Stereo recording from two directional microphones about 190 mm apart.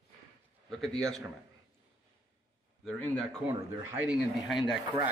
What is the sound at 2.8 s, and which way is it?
Speech, centre (ahead or behind).